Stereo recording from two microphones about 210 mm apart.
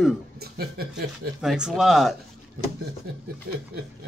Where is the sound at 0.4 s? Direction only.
45° right (ahead or behind).